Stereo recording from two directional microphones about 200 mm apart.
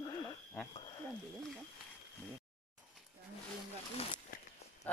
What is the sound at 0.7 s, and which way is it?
Speech, 20° left (ahead or behind).